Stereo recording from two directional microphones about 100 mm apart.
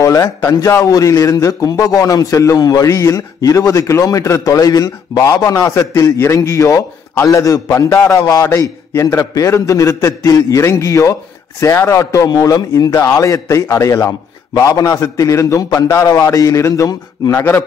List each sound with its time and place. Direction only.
0.0 s a man's voice: 35° left (ahead or behind)
9.2 s a man's voice: 40° left (ahead or behind)
17.3 s a man's voice: 20° left (ahead or behind)